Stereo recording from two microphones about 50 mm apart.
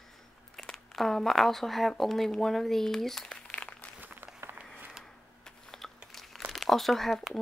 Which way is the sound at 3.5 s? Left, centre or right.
Left.